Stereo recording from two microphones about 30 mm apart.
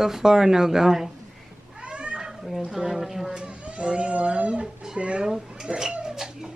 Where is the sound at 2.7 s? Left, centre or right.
Centre.